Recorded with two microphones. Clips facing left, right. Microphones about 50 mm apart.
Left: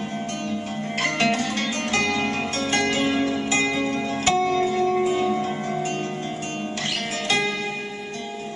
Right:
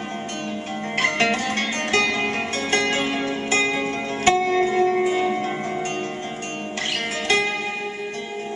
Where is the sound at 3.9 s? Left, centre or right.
Right.